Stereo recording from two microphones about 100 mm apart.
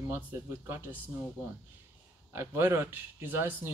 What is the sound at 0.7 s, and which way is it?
Speech, 25° right (ahead or behind).